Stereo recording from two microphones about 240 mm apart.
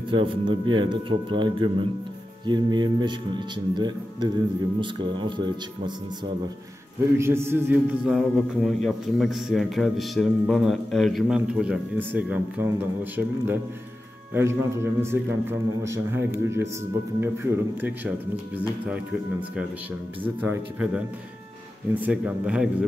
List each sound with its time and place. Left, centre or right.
0.1 s speech: right
7.2 s a man's voice: centre
20.3 s a man's voice: centre
22.0 s a man's voice: centre